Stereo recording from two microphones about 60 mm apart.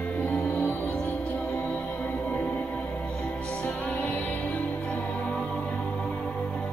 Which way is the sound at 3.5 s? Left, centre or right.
Centre.